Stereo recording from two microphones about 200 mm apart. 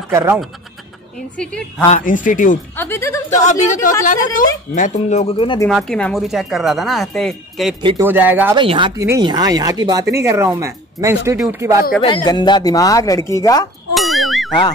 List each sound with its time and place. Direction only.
0.1 s speech: 10° right (ahead or behind)
1.3 s speech: 5° left (ahead or behind)
2.0 s speech: 40° left (ahead or behind)
2.7 s speech: 10° left (ahead or behind)
3.3 s speech: 35° left (ahead or behind)
5.7 s speech: centre (ahead or behind)
8.0 s speech: 10° right (ahead or behind)
8.5 s speech: 25° right (ahead or behind)
12.0 s speech: 25° left (ahead or behind)
13.9 s a sound: centre (ahead or behind)